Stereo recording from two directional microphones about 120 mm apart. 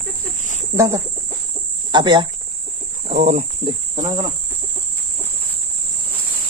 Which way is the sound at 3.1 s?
85° right.